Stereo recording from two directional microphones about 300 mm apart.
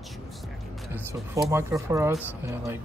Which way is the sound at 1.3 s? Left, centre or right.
Centre.